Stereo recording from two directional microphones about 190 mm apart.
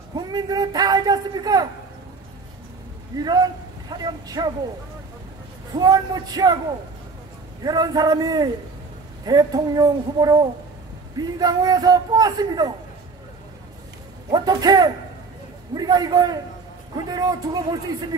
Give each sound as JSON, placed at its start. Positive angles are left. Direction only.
{"t": 0.1, "sound": "a man's voice", "side_deg": -20}
{"t": 3.2, "sound": "a man's voice", "side_deg": -20}
{"t": 5.8, "sound": "a man's voice", "side_deg": -20}
{"t": 7.6, "sound": "a man's voice", "side_deg": -20}
{"t": 14.3, "sound": "a man's voice", "side_deg": -20}